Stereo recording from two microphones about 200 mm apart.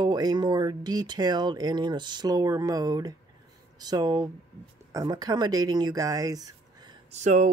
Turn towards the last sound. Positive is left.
turn(degrees=-35)  # may be behind; listen again after turning